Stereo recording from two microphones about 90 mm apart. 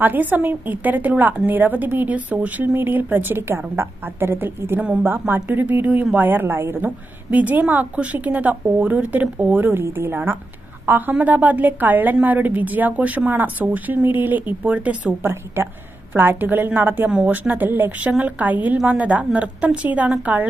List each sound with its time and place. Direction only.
0.0 s a woman's voice: 20° right (ahead or behind)
15.2 s a woman's voice: 25° right (ahead or behind)